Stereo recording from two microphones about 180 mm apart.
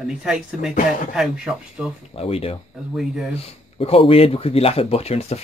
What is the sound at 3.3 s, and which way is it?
Speech, 35° left (ahead or behind).